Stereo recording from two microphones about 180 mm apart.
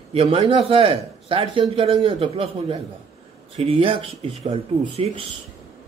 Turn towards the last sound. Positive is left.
turn(degrees=-35)  # may be behind; listen again after turning